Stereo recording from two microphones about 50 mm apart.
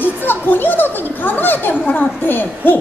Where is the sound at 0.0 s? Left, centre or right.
Left.